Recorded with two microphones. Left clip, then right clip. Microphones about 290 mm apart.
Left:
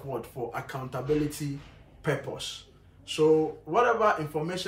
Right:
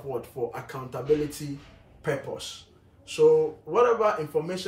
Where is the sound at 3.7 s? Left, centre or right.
Centre.